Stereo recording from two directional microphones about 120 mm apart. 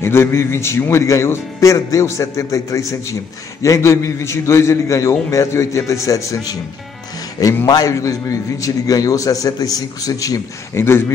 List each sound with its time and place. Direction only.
0.0 s a man's voice: 20° left (ahead or behind)
7.6 s a man's voice: 30° left (ahead or behind)